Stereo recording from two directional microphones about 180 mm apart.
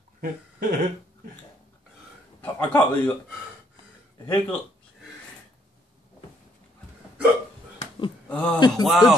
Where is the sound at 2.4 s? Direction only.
10° left (ahead or behind).